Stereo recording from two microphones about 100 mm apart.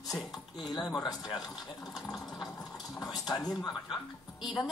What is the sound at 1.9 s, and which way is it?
Speech, centre (ahead or behind).